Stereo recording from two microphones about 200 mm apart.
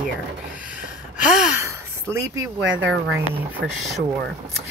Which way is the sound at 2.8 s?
65° right (ahead or behind).